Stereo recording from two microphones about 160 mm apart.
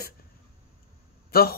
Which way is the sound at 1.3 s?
70° left (ahead or behind).